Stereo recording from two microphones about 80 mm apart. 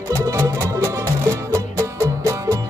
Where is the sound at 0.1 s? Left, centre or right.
Right.